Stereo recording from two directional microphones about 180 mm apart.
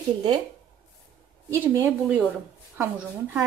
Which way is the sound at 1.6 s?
10° right (ahead or behind).